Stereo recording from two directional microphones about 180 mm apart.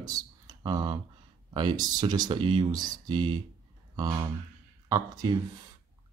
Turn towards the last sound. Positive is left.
turn(degrees=-20)  # may be behind; listen again after turning